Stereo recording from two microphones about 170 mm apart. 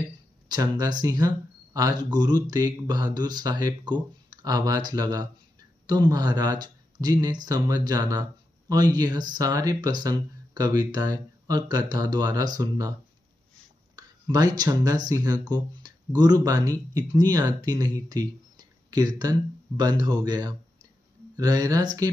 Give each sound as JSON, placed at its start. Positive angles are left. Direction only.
{"t": 0.5, "sound": "speech", "side_deg": -25}
{"t": 13.9, "sound": "speech", "side_deg": -25}
{"t": 18.0, "sound": "a sound", "side_deg": -25}
{"t": 19.8, "sound": "speech", "side_deg": -25}